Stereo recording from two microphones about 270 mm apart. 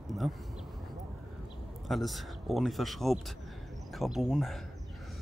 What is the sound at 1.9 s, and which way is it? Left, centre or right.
A man's voice, centre.